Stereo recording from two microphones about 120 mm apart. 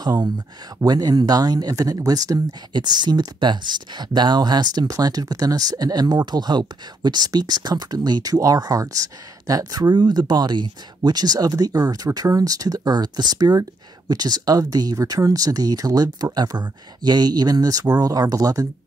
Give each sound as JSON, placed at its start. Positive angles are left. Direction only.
{"t": 0.0, "sound": "speech", "side_deg": -35}